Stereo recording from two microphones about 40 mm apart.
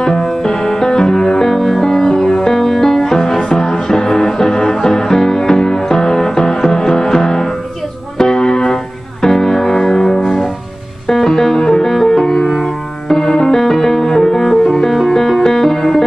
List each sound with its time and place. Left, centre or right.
0.0 s music: centre